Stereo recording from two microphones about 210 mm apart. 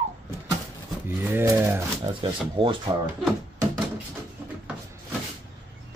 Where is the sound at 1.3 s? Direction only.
10° right (ahead or behind).